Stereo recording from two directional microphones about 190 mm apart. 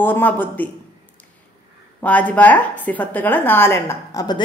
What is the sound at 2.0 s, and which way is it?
A woman's voice, 10° left (ahead or behind).